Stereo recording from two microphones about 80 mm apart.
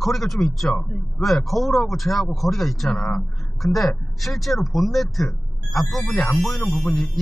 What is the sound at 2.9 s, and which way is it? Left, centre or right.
Speech, centre.